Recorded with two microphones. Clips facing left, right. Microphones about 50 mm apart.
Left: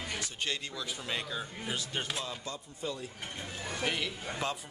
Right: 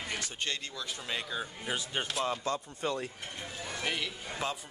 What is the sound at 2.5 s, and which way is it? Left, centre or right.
Speech, right.